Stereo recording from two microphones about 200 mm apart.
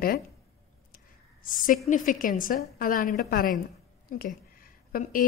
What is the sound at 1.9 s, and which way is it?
A woman's voice, 40° left (ahead or behind).